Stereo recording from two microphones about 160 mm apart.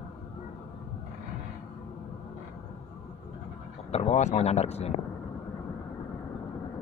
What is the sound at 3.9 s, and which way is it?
Speech, 40° left (ahead or behind).